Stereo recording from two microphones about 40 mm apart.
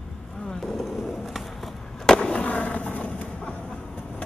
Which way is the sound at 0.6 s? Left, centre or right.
Centre.